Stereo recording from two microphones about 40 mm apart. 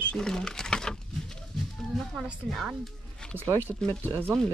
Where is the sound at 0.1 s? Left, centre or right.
Centre.